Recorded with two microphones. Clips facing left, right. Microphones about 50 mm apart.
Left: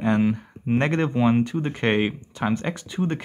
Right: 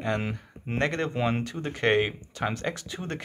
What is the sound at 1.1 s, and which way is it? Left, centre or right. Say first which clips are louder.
Speech: left 8 dB; centre.